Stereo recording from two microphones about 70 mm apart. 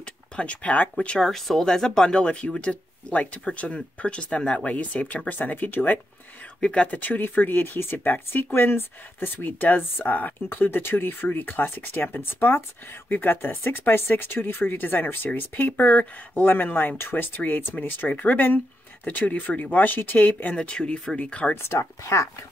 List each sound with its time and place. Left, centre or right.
0.0 s speech: centre
1.2 s speech: centre; by 5.9 s left
6.6 s speech: centre
21.5 s speech: left